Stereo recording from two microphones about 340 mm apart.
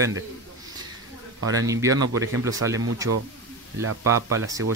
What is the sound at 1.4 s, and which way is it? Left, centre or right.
Speech, centre.